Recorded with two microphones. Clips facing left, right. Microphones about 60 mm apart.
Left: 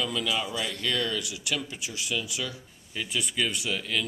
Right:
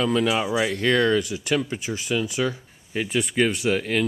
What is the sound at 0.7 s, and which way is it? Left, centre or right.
Speech, right.